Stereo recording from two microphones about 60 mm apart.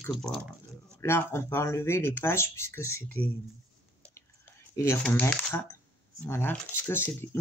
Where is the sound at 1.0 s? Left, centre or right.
Left.